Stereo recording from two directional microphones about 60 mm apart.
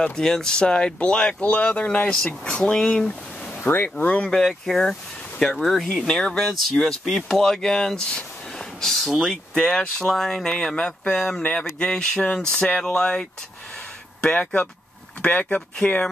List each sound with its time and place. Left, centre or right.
0.0 s speech: centre
3.5 s speech: left
4.3 s speech: centre
14.3 s speech: left